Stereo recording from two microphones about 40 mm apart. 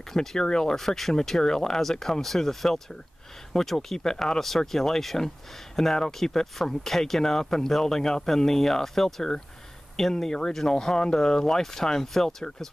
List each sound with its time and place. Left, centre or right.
0.1 s speech: centre